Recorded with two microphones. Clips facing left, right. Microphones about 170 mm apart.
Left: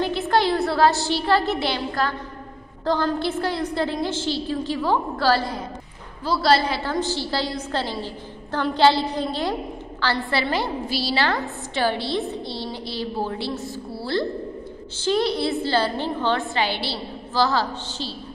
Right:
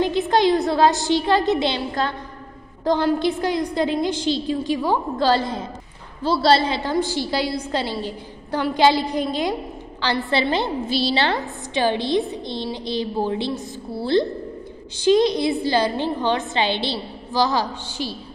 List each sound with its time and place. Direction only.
0.0 s a woman's voice: 20° right (ahead or behind)